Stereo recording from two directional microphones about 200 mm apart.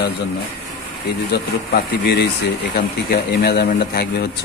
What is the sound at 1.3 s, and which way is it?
Speech, 55° left (ahead or behind).